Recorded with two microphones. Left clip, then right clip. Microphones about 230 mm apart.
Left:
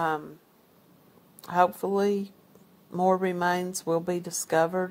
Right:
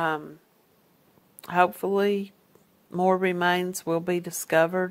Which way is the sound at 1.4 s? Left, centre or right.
Right.